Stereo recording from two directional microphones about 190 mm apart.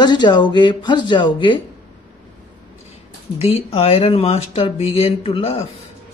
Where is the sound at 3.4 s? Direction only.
30° left (ahead or behind).